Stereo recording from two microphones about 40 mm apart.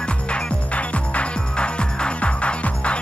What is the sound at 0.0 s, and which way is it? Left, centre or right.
Music, left.